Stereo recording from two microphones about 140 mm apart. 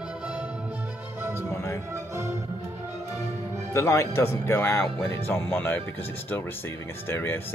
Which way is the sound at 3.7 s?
20° left (ahead or behind).